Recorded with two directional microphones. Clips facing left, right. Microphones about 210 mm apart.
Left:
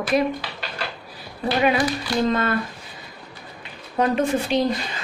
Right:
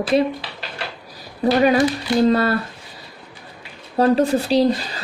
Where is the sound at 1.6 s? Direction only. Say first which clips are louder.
Right 4 dB; 35° right (ahead or behind).